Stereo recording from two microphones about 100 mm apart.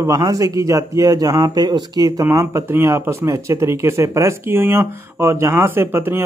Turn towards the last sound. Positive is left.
turn(degrees=-20)  # may be behind; listen again after turning